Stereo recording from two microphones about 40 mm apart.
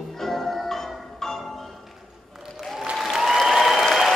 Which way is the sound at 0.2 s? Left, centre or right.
Centre.